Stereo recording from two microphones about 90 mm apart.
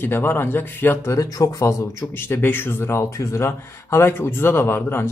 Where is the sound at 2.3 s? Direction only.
25° left (ahead or behind).